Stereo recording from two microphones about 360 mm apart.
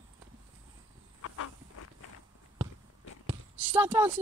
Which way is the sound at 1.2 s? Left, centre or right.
Left.